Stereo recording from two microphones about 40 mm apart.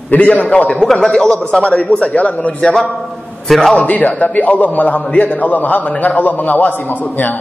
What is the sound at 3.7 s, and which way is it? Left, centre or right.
A man's voice, left.